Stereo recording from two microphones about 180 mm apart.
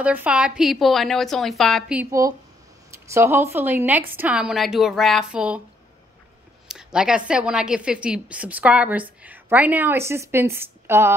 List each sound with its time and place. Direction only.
0.0 s a woman's voice: 10° right (ahead or behind)
2.0 s a woman's voice: 20° right (ahead or behind)
6.7 s a woman's voice: 5° right (ahead or behind)